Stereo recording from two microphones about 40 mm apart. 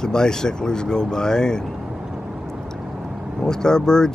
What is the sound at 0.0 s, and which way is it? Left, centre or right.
Speech, centre.